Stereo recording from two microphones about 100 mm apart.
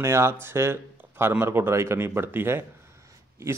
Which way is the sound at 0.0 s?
25° right (ahead or behind).